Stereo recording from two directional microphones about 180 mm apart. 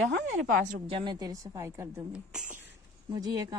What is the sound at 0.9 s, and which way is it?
Speech, 30° right (ahead or behind).